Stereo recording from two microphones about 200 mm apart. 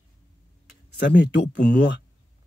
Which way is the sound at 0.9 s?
60° left (ahead or behind).